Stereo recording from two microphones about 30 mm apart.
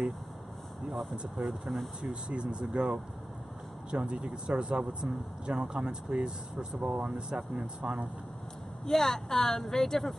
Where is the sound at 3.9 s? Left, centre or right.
Right.